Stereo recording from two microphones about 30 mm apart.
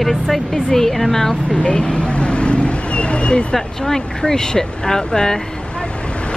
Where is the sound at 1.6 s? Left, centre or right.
Left.